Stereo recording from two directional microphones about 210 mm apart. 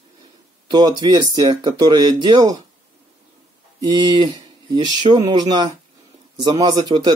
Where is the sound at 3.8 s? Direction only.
20° right (ahead or behind).